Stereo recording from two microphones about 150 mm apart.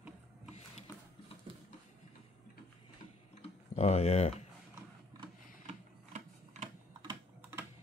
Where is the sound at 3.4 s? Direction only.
45° left (ahead or behind).